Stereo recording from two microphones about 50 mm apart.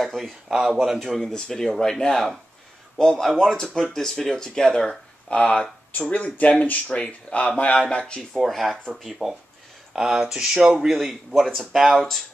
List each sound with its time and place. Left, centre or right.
0.0 s a man's voice: centre
5.3 s speech: left
8.3 s a man's voice: centre
10.9 s a man's voice: centre